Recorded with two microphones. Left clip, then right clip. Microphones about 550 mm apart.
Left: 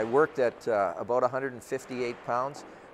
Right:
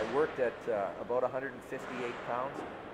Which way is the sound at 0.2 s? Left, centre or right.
Left.